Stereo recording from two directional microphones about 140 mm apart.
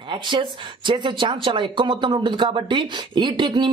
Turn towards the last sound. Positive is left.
turn(degrees=-30)  # may be behind; listen again after turning